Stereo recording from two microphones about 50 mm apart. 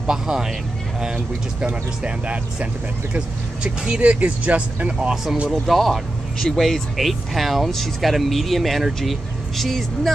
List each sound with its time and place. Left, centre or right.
0.0 s speech: centre
1.7 s speech: right
5.1 s speech: centre
7.0 s speech: centre